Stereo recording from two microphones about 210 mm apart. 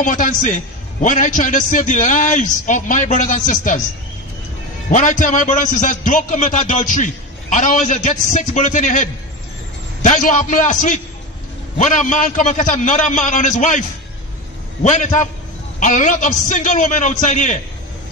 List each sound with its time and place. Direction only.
0.0 s a man's voice: 40° left (ahead or behind)
4.9 s a man's voice: 35° left (ahead or behind)